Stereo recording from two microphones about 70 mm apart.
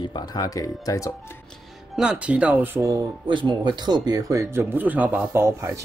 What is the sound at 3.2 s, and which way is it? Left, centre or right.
Speech, right.